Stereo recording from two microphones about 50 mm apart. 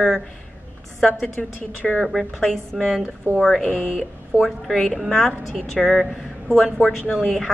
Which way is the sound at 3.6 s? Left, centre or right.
Left.